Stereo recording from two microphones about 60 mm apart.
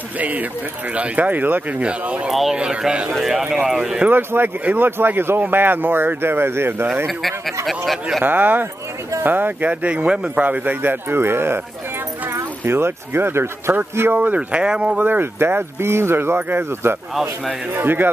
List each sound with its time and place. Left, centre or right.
0.2 s speech: right
1.8 s speech: centre
3.1 s speech: centre
4.1 s speech: right
7.1 s speech: centre
8.2 s speech: right
14.1 s speech: right
15.0 s speech: right
17.1 s speech: centre
17.7 s speech: right